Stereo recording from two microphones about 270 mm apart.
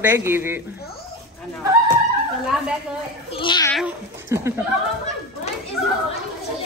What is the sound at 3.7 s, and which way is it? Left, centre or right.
Speech, centre.